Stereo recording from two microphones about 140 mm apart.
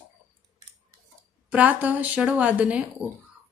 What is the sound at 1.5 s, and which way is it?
A woman's voice, 10° right (ahead or behind).